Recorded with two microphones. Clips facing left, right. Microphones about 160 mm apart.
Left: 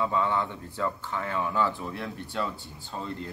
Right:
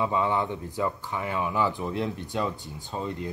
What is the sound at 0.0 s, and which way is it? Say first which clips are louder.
Speech: right 1 dB; 15° right (ahead or behind).